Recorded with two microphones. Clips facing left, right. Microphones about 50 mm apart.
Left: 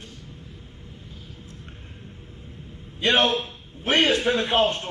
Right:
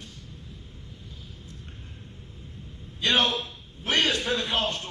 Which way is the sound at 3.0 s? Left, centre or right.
Left.